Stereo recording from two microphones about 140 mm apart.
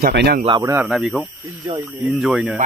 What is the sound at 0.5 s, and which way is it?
Speech, 30° right (ahead or behind).